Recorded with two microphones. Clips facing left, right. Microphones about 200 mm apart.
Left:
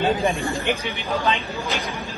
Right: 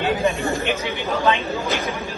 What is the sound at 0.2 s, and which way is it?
Speech, 15° left (ahead or behind).